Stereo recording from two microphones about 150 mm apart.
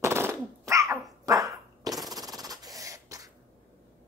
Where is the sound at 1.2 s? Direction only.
25° right (ahead or behind).